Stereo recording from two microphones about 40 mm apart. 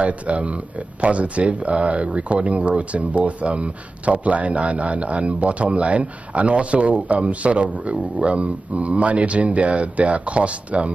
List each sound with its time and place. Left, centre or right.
0.0 s speech: right